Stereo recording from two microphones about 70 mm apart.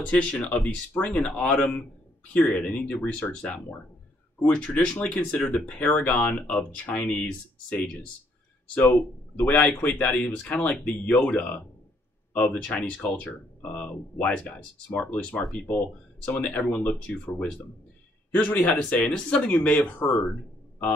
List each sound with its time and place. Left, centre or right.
0.0 s speech: centre
9.4 s speech: left
12.6 s speech: centre
18.3 s speech: left